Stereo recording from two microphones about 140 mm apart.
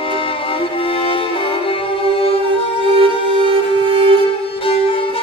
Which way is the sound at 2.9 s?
35° right (ahead or behind).